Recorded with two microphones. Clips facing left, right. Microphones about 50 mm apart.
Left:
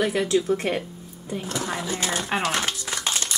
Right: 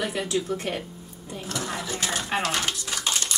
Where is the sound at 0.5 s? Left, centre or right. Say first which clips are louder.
Left 5 dB; centre.